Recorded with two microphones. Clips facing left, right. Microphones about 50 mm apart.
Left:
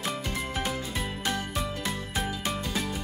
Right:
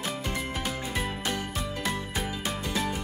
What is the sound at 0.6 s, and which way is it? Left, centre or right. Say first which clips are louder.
Music: right 1 dB; centre.